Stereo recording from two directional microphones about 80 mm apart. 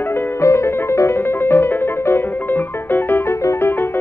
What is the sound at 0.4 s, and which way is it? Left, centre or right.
Music, left.